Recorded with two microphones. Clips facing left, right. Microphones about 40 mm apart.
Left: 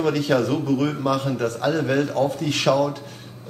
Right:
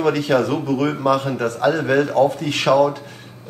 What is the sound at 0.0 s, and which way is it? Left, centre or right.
Speech, centre.